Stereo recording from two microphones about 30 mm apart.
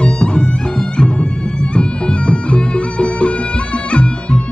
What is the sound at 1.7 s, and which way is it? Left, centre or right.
Music, left.